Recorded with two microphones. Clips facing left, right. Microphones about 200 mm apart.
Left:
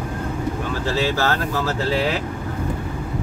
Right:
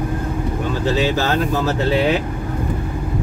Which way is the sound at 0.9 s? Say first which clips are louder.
Right 2 dB; 20° right (ahead or behind).